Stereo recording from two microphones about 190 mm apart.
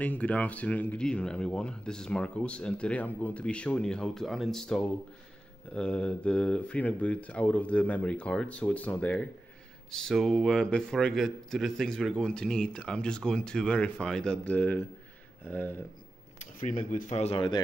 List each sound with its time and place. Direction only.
0.0 s a man's voice: 5° left (ahead or behind)
16.6 s speech: 40° left (ahead or behind)